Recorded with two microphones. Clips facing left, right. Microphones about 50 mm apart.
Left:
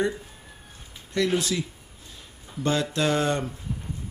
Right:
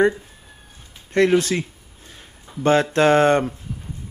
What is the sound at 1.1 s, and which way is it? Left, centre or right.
Speech, right.